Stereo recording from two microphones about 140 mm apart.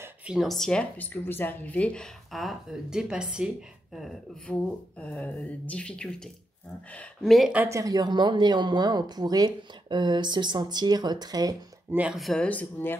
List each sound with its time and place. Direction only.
0.0 s speech: 10° right (ahead or behind)
7.5 s speech: 20° right (ahead or behind)
11.9 s speech: 10° right (ahead or behind)
12.2 s speech: 5° left (ahead or behind)